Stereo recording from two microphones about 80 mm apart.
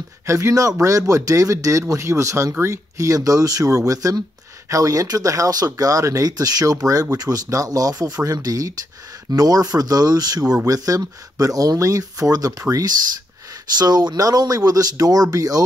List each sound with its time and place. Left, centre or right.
0.3 s speech: right
13.7 s speech: right